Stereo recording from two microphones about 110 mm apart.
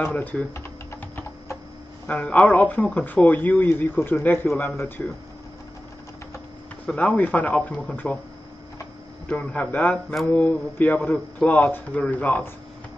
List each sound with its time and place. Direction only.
0.0 s speech: 15° left (ahead or behind)
2.0 s speech: 5° left (ahead or behind)
6.9 s speech: 15° left (ahead or behind)
9.3 s speech: 15° left (ahead or behind)